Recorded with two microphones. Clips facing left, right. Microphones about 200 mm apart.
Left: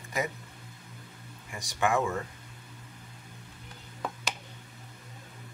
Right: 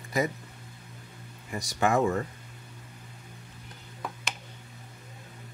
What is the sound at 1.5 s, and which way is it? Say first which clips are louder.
Speech: right 2 dB; 40° right (ahead or behind).